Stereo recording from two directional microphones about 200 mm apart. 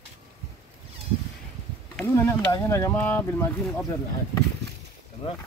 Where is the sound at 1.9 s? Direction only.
10° left (ahead or behind).